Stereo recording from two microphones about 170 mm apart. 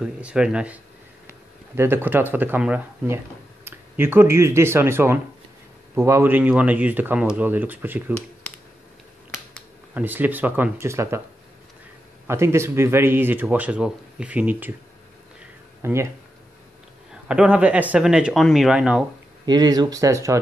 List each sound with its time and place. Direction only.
0.0 s speech: 5° right (ahead or behind)
1.8 s speech: 15° right (ahead or behind)
9.9 s speech: 10° right (ahead or behind)
12.3 s speech: 15° right (ahead or behind)
15.8 s speech: 15° right (ahead or behind)
17.3 s speech: 5° right (ahead or behind)
19.4 s speech: 25° right (ahead or behind)